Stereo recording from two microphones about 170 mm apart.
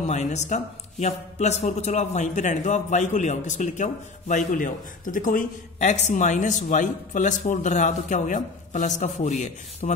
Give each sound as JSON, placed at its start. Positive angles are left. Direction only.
{"t": 0.0, "sound": "a man's voice", "side_deg": 40}